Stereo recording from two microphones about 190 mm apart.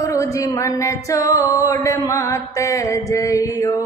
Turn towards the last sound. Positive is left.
turn(degrees=15)  # may be behind; listen again after turning